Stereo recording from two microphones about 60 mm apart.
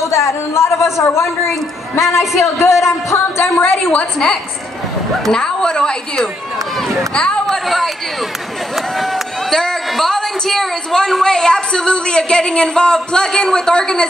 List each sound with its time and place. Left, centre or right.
0.0 s a man's voice: left
3.5 s a woman's voice: left
5.2 s a woman's voice: centre
7.4 s chatter: centre
8.7 s a woman's voice: centre